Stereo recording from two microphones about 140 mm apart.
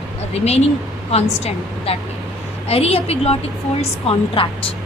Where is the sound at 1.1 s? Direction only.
50° left (ahead or behind).